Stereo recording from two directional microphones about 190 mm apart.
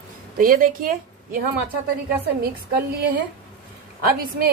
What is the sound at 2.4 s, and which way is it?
A woman's voice, 55° right (ahead or behind).